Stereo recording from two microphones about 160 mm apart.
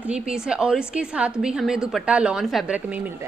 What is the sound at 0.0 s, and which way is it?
A woman's voice, 5° right (ahead or behind).